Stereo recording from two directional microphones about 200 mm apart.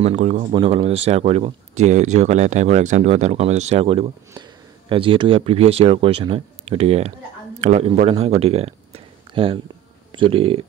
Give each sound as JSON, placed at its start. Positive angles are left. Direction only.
{"t": 0.0, "sound": "a man's voice", "side_deg": -35}